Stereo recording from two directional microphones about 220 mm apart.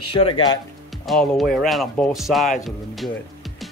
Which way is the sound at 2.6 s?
Centre (ahead or behind).